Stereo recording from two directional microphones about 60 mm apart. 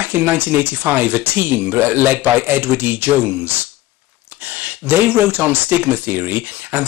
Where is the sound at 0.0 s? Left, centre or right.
Right.